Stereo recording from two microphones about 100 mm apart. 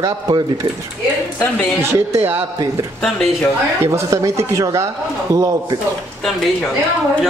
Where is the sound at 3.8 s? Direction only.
30° right (ahead or behind).